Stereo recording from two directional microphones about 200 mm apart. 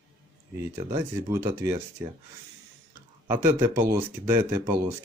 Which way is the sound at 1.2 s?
10° right (ahead or behind).